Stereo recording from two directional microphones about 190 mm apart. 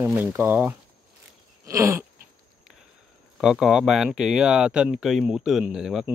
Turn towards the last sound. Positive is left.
turn(degrees=-5)  # may be behind; listen again after turning